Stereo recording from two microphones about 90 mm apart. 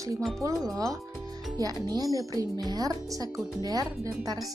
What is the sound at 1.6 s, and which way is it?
Speech, 45° right (ahead or behind).